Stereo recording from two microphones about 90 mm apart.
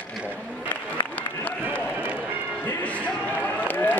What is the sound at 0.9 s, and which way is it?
Speech, 20° left (ahead or behind).